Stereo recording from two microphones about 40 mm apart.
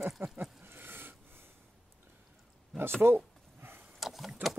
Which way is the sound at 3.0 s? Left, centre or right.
Right.